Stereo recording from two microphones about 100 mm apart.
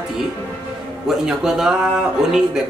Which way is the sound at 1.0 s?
5° right (ahead or behind).